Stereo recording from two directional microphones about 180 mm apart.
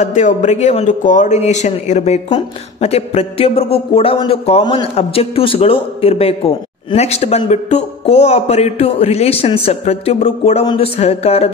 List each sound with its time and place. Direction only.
0.0 s a man's voice: 45° left (ahead or behind)